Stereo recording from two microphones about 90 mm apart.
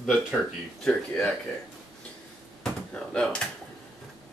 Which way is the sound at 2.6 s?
10° left (ahead or behind).